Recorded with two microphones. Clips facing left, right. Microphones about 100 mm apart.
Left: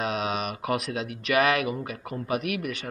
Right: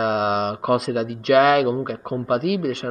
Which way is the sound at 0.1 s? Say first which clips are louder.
Right 8 dB; 30° right (ahead or behind).